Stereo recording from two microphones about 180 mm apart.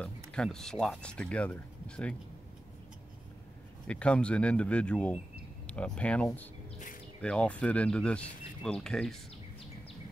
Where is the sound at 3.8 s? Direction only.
5° left (ahead or behind).